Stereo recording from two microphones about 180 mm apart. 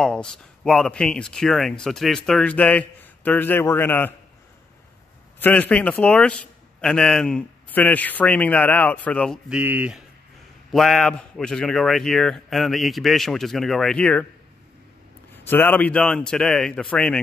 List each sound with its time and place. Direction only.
0.0 s speech: 5° left (ahead or behind)
5.4 s a man's voice: 10° left (ahead or behind)
9.5 s speech: 10° right (ahead or behind); by 14.2 s 5° left (ahead or behind)
15.4 s speech: 10° left (ahead or behind)